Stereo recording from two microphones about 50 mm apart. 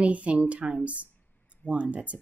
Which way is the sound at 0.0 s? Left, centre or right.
Right.